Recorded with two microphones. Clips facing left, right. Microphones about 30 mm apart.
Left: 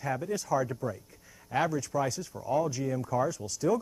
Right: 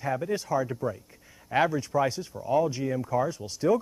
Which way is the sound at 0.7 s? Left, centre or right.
Centre.